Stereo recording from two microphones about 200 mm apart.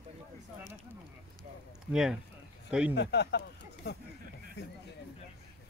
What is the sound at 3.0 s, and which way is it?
Speech, 55° left (ahead or behind).